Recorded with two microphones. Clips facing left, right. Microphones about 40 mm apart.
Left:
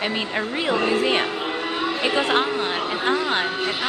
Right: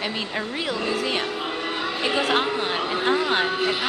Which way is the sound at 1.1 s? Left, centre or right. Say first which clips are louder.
Left 4 dB; centre.